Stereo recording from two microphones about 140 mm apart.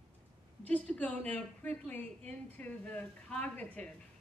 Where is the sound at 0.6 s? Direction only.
10° left (ahead or behind).